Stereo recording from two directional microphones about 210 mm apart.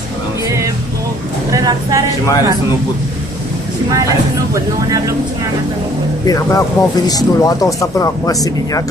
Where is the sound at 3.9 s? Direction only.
15° right (ahead or behind).